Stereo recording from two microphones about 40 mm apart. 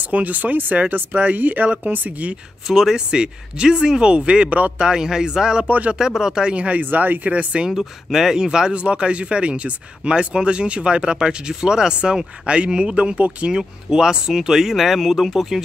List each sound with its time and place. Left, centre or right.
0.0 s speech: right
2.6 s speech: centre
3.1 s speech: right
4.5 s speech: right
4.7 s speech: centre
5.7 s speech: right
5.9 s speech: centre
6.5 s speech: right
7.2 s speech: right
7.8 s speech: centre; by 13.5 s right
13.5 s speech: centre